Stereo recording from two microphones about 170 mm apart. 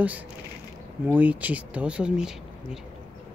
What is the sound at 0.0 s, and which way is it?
Speech, 10° right (ahead or behind).